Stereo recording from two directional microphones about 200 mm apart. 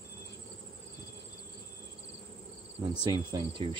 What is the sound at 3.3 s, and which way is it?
Speech, 20° right (ahead or behind).